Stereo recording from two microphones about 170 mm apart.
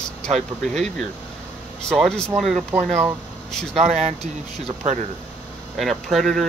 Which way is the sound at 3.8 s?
40° right (ahead or behind).